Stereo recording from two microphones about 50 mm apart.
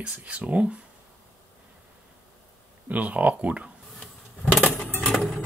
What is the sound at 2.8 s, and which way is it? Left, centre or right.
Speech, right.